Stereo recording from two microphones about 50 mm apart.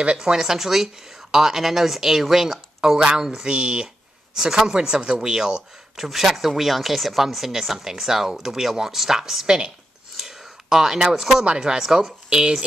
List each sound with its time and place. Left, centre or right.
0.2 s speech: centre
10.1 s a sound: centre
11.4 s speech: centre